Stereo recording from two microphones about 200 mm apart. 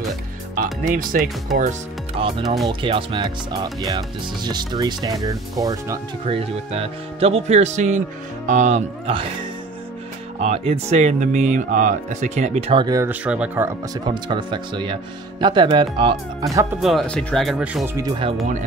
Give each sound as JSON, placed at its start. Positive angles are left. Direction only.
{"t": 0.8, "sound": "speech", "side_deg": -40}
{"t": 1.6, "sound": "speech", "side_deg": -30}
{"t": 2.4, "sound": "speech", "side_deg": 0}
{"t": 2.7, "sound": "speech", "side_deg": -25}
{"t": 12.8, "sound": "speech", "side_deg": -15}
{"t": 13.9, "sound": "speech", "side_deg": -20}
{"t": 16.8, "sound": "speech", "side_deg": 5}
{"t": 17.8, "sound": "speech", "side_deg": -15}